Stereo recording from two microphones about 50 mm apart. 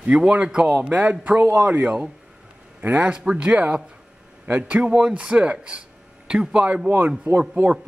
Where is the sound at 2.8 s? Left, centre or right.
Right.